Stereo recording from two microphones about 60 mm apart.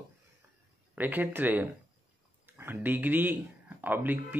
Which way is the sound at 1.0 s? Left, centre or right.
Right.